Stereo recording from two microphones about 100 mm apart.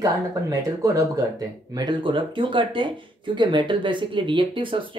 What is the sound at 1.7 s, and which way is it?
Speech, 45° right (ahead or behind).